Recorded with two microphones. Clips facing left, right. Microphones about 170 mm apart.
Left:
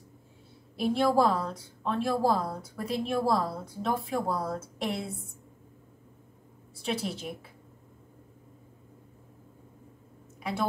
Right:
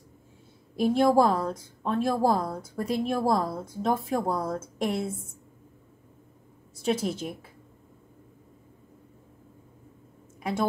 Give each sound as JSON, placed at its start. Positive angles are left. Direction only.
{"t": 0.7, "sound": "a woman's voice", "side_deg": -45}
{"t": 6.8, "sound": "a woman's voice", "side_deg": -45}